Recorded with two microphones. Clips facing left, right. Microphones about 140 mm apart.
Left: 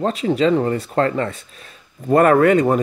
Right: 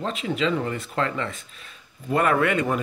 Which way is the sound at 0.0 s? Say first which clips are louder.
Left 8 dB; 40° left (ahead or behind).